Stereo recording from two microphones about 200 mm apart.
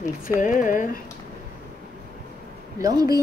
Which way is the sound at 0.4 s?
40° left (ahead or behind).